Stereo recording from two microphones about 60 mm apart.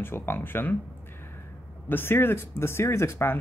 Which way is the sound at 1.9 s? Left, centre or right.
Left.